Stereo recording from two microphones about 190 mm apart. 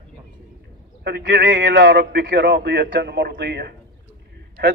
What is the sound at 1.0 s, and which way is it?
A man's voice, 60° right (ahead or behind).